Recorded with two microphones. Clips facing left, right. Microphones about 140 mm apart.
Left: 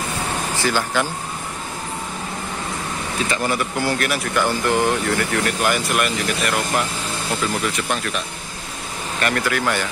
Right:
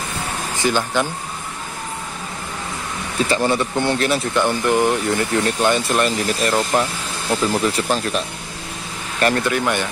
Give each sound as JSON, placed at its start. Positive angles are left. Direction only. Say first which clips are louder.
{"t": 0.6, "sound": "speech", "louder": "right 3 dB", "side_deg": -20}
{"t": 3.3, "sound": "speech", "louder": "right 5 dB", "side_deg": -30}
{"t": 9.2, "sound": "speech", "louder": "right 3 dB", "side_deg": -25}